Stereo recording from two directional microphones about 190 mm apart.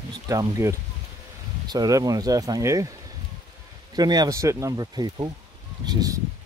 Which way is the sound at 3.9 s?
20° right (ahead or behind).